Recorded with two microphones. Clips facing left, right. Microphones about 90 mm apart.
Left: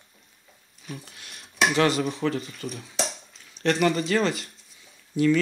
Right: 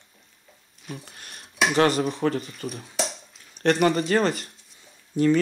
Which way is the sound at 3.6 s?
45° right (ahead or behind).